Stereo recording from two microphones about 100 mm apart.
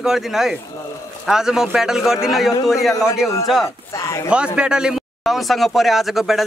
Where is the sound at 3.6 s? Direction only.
30° left (ahead or behind).